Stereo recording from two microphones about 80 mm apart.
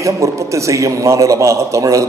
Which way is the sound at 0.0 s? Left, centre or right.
Right.